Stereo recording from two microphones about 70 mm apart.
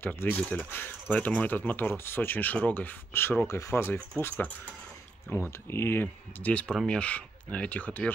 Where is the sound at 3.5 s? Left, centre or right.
Left.